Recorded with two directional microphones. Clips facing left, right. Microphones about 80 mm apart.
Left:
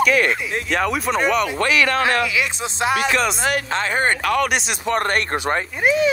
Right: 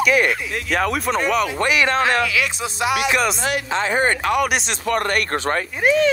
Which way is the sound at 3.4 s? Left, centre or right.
Left.